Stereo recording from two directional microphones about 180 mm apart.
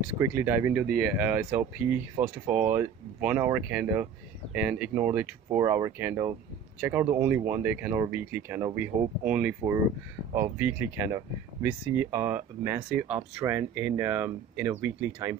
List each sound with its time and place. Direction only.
0.1 s speech: 10° right (ahead or behind)